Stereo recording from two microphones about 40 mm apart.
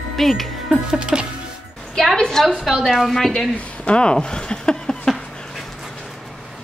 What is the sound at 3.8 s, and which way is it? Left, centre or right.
Speech, left.